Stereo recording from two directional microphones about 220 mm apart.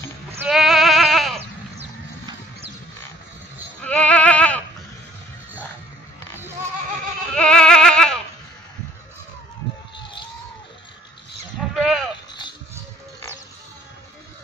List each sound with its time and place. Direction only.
0.4 s goat: centre (ahead or behind)
1.8 s music: 25° right (ahead or behind)
3.8 s music: 5° left (ahead or behind)
7.3 s goat: 5° left (ahead or behind)
11.7 s sheep: centre (ahead or behind)